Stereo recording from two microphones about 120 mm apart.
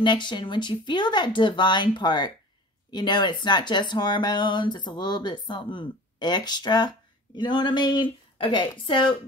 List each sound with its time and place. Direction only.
0.0 s speech: 40° left (ahead or behind)